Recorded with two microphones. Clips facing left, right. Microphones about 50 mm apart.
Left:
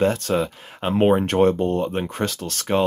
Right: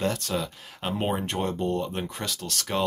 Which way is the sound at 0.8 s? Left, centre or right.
Left.